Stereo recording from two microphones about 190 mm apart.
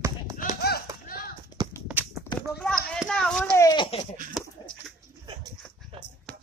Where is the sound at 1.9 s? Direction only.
10° right (ahead or behind).